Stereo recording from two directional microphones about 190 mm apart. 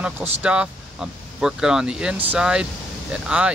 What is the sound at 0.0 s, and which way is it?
Speech, 5° right (ahead or behind).